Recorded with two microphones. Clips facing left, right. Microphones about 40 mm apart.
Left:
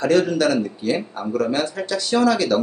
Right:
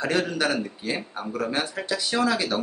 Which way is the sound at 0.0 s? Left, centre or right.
Centre.